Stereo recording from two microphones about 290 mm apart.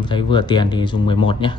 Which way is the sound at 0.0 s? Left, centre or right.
Centre.